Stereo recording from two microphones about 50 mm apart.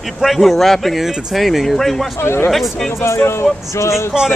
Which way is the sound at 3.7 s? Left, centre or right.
Left.